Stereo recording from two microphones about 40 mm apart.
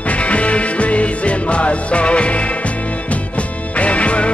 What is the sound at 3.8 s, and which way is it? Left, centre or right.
Music, left.